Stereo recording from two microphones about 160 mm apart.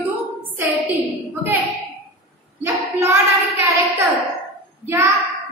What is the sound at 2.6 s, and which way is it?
Child singing, 15° right (ahead or behind).